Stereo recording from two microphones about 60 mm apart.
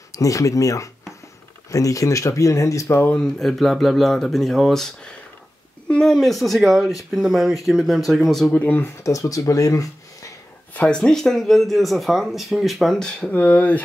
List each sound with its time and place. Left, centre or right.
0.1 s speech: left
3.2 s speech: centre
8.5 s speech: left
9.0 s speech: left
10.7 s a sound: left
11.0 s speech: centre
13.3 s speech: left